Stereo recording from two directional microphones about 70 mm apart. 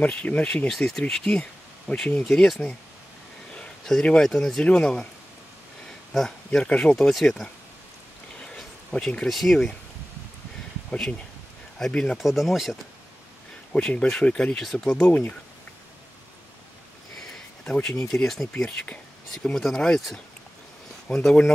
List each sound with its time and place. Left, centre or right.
0.0 s speech: centre
0.7 s speech: centre
2.2 s speech: centre
6.1 s speech: centre
7.0 s speech: centre
8.4 s a sound: centre
10.9 s speech: centre
12.2 s speech: centre
13.7 s speech: centre
15.0 s speech: centre
18.0 s speech: centre
18.5 s speech: centre
19.3 s speech: centre